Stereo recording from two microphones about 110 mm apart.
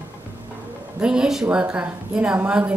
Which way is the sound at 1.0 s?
5° right (ahead or behind).